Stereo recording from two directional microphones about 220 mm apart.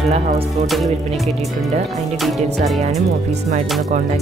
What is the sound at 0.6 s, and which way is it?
Speech, centre (ahead or behind).